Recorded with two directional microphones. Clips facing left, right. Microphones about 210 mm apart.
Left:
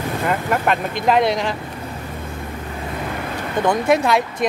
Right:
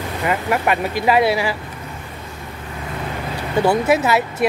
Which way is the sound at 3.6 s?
5° right (ahead or behind).